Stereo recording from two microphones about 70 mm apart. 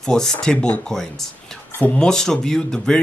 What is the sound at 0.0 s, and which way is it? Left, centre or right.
Speech, centre.